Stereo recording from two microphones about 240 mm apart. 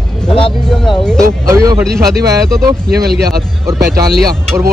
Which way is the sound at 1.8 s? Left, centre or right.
Centre.